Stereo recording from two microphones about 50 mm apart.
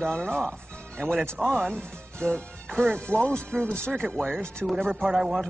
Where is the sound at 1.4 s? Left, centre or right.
Right.